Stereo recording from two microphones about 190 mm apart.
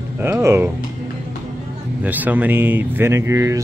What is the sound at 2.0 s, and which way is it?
Speech, 10° right (ahead or behind).